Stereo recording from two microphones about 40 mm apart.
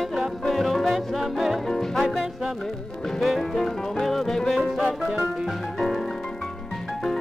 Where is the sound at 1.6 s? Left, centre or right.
Centre.